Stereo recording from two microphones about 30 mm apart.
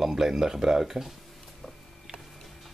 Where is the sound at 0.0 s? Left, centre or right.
Centre.